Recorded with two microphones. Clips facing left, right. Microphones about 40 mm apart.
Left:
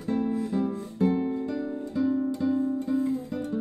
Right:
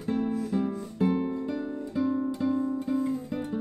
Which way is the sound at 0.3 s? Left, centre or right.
Left.